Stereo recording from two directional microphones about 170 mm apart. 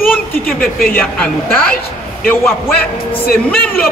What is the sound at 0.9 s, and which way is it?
A man's voice, 10° left (ahead or behind).